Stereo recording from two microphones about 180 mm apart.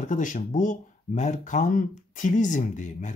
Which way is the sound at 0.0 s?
45° left (ahead or behind).